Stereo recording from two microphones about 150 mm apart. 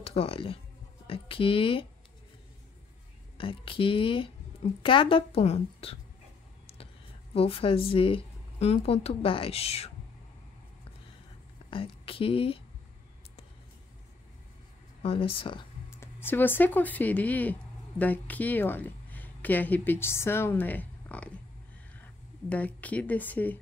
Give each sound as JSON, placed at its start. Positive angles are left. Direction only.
{"t": 0.0, "sound": "speech", "side_deg": 40}
{"t": 3.3, "sound": "speech", "side_deg": 35}
{"t": 7.3, "sound": "speech", "side_deg": 40}
{"t": 11.7, "sound": "speech", "side_deg": 40}
{"t": 15.0, "sound": "speech", "side_deg": 40}
{"t": 15.9, "sound": "speech", "side_deg": 15}
{"t": 22.5, "sound": "speech", "side_deg": 10}